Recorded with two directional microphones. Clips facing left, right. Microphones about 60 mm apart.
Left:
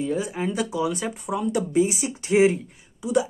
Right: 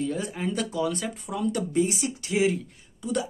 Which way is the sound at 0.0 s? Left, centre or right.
Centre.